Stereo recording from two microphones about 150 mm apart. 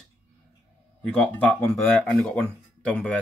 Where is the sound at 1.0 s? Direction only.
5° left (ahead or behind).